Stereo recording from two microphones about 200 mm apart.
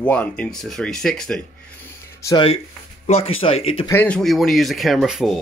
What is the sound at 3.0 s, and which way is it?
Speech, 30° left (ahead or behind).